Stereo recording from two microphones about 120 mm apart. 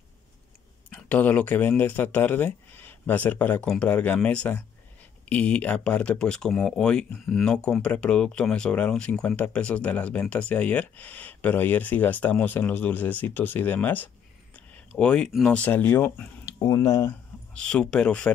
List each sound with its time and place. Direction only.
0.8 s speech: 10° left (ahead or behind)
16.6 s speech: 25° left (ahead or behind)
17.6 s speech: 10° left (ahead or behind)